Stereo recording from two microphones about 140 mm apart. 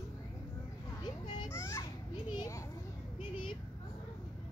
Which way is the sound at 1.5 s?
20° left (ahead or behind).